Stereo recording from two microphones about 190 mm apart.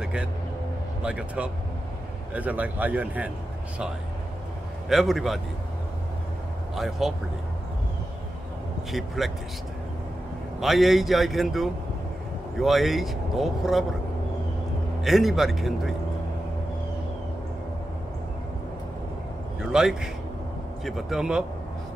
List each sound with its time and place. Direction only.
0.0 s vehicle: 5° right (ahead or behind)
1.0 s speech: 5° right (ahead or behind)
4.8 s speech: centre (ahead or behind)
6.7 s speech: centre (ahead or behind)
8.9 s speech: centre (ahead or behind)
10.6 s speech: centre (ahead or behind)
15.0 s speech: centre (ahead or behind)
19.6 s speech: 5° right (ahead or behind)